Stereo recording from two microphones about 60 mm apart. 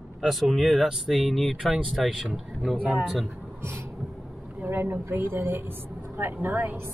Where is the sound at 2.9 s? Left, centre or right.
Centre.